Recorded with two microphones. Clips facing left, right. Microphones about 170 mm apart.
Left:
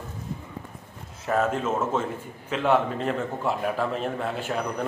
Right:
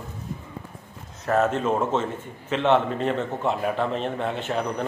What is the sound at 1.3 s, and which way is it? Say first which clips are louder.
Speech: right 3 dB; 10° left (ahead or behind).